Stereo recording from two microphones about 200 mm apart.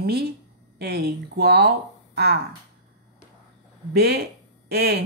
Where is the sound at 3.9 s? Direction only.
55° right (ahead or behind).